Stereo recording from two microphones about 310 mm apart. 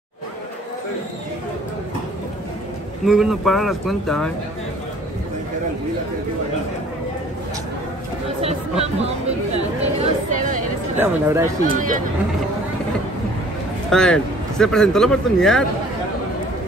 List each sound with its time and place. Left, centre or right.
3.1 s speech: centre
8.4 s chatter: centre
9.9 s a sound: right
11.0 s speech: centre
11.7 s speech: right
13.8 s speech: centre